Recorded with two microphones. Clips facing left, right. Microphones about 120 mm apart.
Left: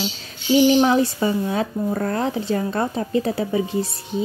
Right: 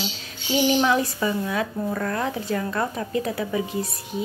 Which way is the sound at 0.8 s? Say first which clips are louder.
Left 4 dB; 30° left (ahead or behind).